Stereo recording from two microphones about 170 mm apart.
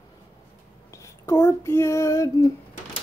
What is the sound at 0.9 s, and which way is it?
Child singing, 15° left (ahead or behind).